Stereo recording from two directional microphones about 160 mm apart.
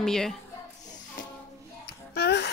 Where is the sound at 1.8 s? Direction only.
90° left.